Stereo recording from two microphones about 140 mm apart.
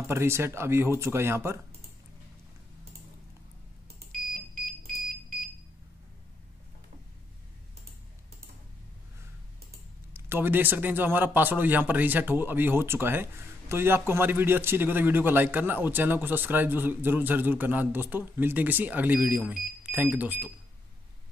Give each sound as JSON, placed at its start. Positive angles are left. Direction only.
{"t": 0.1, "sound": "speech", "side_deg": -20}
{"t": 10.1, "sound": "speech", "side_deg": -15}